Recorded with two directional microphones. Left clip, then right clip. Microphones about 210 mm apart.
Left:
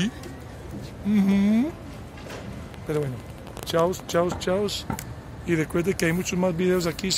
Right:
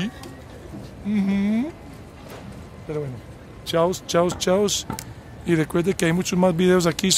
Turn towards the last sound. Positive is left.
turn(degrees=-45)  # may be behind; listen again after turning